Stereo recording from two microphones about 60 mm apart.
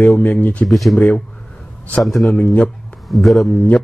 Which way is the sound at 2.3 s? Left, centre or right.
Left.